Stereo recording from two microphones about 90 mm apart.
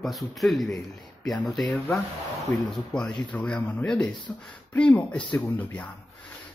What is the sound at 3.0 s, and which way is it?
Speech, 15° left (ahead or behind).